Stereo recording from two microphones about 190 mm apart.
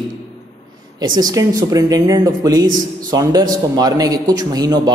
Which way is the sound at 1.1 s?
20° right (ahead or behind).